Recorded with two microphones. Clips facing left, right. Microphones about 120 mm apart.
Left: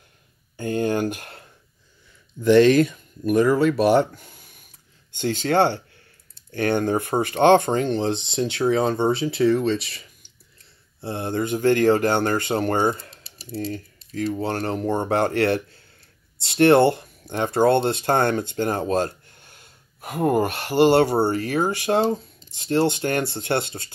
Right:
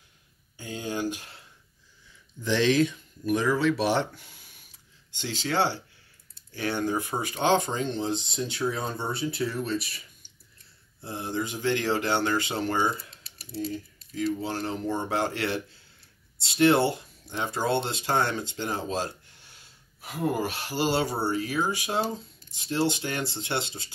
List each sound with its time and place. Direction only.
0.6 s a sound: 55° left (ahead or behind)
2.4 s speech: 55° left (ahead or behind); by 9.9 s 90° left
11.0 s speech: 65° left (ahead or behind)
13.6 s speech: 70° left (ahead or behind)